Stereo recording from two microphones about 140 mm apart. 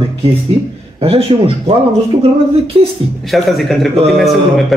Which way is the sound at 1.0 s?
45° right (ahead or behind).